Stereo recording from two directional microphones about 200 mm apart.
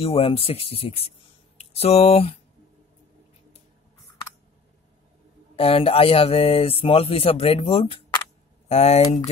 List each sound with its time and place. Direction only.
0.0 s speech: 30° left (ahead or behind)
5.6 s speech: 30° left (ahead or behind)